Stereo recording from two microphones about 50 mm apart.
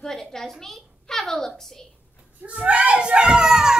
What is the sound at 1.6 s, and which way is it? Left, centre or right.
Speech, centre.